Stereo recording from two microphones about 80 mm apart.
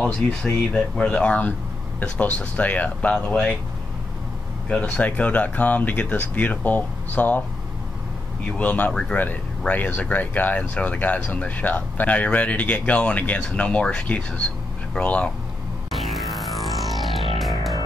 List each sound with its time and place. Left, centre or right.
0.0 s speech: centre
4.6 s speech: centre
8.5 s speech: centre
15.9 s music: centre